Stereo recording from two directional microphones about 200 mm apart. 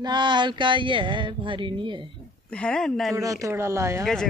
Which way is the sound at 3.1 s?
15° right (ahead or behind).